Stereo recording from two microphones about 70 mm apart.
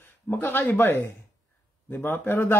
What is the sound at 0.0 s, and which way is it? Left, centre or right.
Speech, left.